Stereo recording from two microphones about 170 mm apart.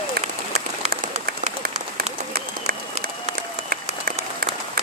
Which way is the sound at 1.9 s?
60° right (ahead or behind).